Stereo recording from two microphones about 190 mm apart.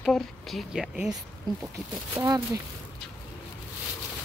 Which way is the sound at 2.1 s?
15° right (ahead or behind).